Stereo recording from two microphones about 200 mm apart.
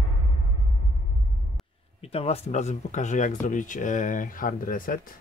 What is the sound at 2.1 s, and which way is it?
Speech, 30° left (ahead or behind).